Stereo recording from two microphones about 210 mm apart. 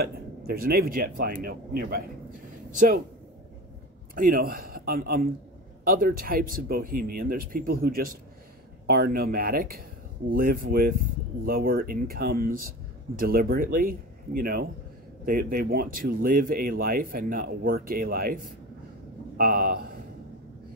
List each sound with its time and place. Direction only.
0.0 s speech: 45° right (ahead or behind)
4.1 s a man's voice: 40° right (ahead or behind)